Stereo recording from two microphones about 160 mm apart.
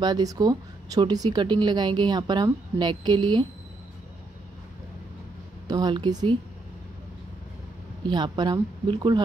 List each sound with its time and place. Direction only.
0.0 s a woman's voice: 25° right (ahead or behind)
5.7 s a woman's voice: 25° right (ahead or behind)
8.1 s a woman's voice: 25° right (ahead or behind)